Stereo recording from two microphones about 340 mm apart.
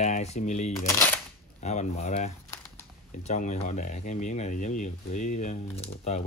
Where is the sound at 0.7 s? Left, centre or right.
Centre.